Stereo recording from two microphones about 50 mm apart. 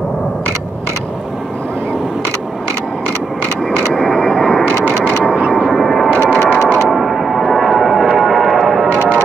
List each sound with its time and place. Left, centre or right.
3.9 s vehicle: centre
5.7 s vehicle: centre
6.3 s music: left
6.9 s vehicle: centre
8.2 s music: centre
8.8 s music: left